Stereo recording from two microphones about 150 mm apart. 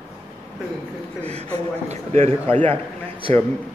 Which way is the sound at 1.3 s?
45° right (ahead or behind).